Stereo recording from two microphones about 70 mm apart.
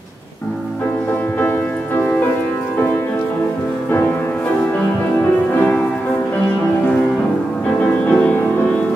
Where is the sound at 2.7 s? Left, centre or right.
Left.